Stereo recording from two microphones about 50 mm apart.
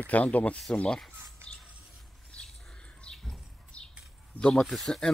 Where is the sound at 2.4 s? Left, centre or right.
Centre.